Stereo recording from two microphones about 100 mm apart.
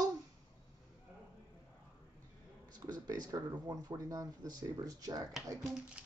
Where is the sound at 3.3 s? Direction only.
40° right (ahead or behind).